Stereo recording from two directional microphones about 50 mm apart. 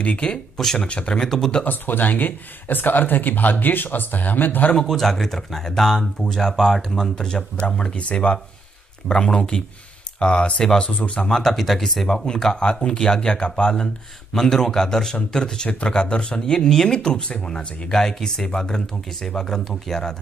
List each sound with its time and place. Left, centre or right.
0.0 s speech: left
0.6 s speech: centre
0.8 s speech: left
1.6 s speech: left
4.8 s speech: centre
14.3 s speech: centre